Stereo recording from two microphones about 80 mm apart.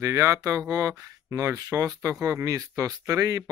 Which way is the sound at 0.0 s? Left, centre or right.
Right.